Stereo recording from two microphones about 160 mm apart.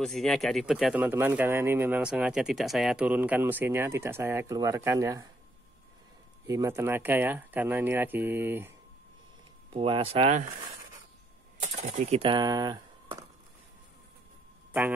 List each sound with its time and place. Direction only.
0.0 s speech: centre (ahead or behind); by 5.3 s 20° right (ahead or behind)
6.4 s speech: 20° right (ahead or behind)
9.7 s speech: 35° right (ahead or behind)
11.6 s speech: 45° right (ahead or behind); by 13.2 s 25° right (ahead or behind)